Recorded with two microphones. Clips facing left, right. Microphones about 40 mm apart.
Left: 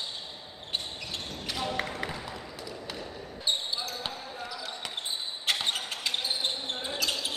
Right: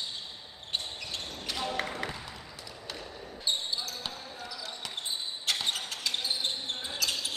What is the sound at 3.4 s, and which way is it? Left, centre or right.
Basketball bounce, left.